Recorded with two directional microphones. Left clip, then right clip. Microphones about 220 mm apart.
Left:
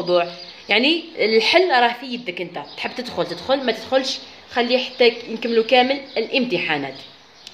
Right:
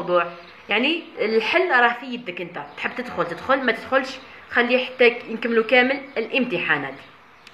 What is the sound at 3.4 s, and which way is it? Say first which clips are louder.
A woman's voice: right 1 dB; 15° left (ahead or behind).